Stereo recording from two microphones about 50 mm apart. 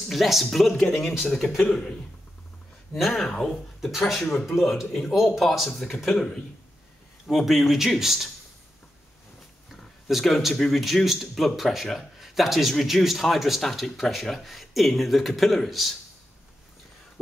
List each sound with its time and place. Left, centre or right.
0.1 s speech: centre
0.9 s speech: left
1.7 s speech: centre
4.6 s speech: centre
7.3 s speech: centre
9.7 s speech: centre